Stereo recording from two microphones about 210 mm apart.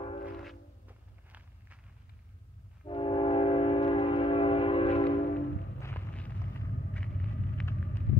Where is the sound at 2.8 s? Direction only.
25° left (ahead or behind).